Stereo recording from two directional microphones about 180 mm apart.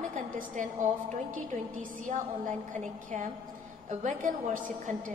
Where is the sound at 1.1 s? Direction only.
45° right (ahead or behind).